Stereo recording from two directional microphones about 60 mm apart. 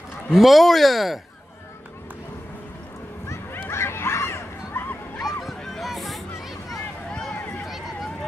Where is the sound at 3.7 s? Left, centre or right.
Left.